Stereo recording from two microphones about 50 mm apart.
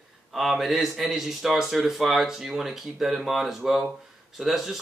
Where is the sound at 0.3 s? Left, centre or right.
Centre.